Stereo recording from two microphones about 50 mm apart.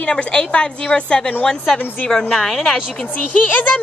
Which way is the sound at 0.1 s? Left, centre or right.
Centre.